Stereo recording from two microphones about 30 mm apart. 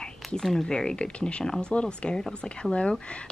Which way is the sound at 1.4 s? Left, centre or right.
Left.